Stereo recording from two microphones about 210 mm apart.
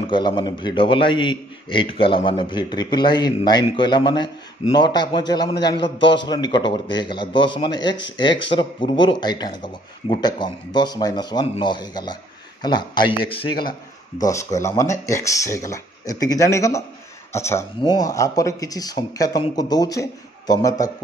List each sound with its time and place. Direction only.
0.1 s a man's voice: 20° left (ahead or behind)